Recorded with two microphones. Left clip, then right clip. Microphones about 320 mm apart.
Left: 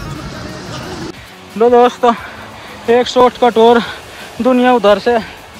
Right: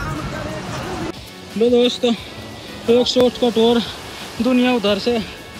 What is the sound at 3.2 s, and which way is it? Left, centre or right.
Speech, centre.